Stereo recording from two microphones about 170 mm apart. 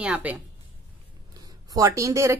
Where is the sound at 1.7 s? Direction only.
20° right (ahead or behind).